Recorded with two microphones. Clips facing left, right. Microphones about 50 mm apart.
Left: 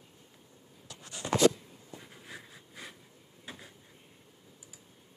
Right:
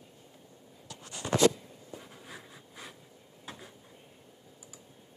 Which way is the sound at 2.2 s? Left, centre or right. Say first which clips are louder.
Even; centre.